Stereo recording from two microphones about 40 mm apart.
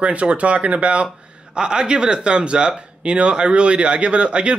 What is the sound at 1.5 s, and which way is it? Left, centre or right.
Speech, right.